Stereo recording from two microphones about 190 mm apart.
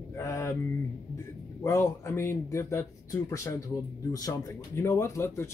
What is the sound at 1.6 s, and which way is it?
Speech, 15° left (ahead or behind).